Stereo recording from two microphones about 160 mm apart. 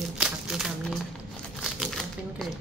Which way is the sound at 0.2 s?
5° right (ahead or behind).